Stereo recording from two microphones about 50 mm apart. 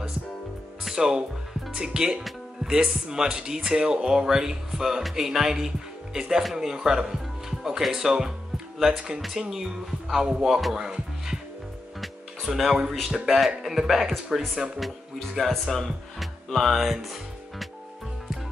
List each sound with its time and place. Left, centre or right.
0.9 s speech: centre
12.4 s speech: centre